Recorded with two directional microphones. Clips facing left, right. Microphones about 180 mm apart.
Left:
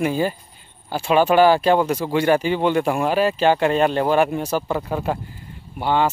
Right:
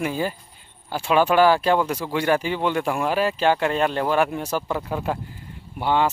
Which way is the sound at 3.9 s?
20° left (ahead or behind).